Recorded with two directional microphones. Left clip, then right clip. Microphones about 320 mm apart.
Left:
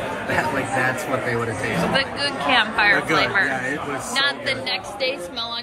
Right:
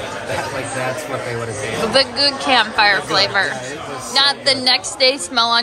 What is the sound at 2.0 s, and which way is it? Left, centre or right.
A woman's voice, centre.